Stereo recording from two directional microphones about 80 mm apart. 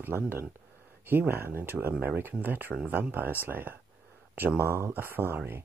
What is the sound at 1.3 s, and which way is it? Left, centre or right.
Speech, right.